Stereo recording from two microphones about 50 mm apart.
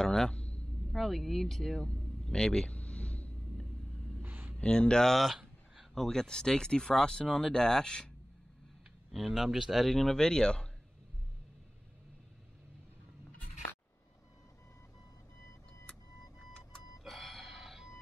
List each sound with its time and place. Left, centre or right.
0.0 s a man's voice: centre
0.9 s speech: centre
2.8 s a sound: left
4.2 s a sound: right
4.6 s speech: centre
5.1 s speech: centre
5.9 s speech: centre
9.1 s speech: centre
9.8 s speech: centre
17.0 s a sound: centre